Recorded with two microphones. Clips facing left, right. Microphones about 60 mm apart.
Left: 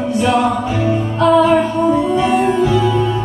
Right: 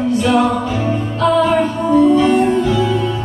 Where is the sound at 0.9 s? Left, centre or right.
Centre.